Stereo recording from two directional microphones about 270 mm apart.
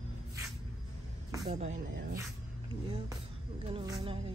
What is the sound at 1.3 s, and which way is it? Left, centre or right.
Music, centre.